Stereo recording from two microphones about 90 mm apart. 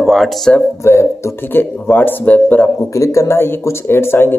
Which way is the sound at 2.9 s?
35° left (ahead or behind).